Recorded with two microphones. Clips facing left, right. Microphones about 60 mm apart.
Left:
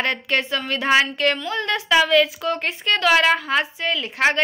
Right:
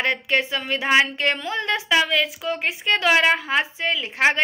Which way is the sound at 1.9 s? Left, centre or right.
Centre.